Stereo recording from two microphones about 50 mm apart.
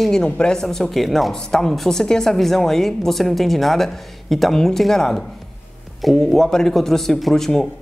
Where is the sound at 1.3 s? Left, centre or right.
Centre.